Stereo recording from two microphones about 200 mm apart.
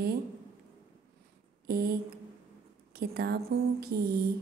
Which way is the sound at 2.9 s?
50° right (ahead or behind).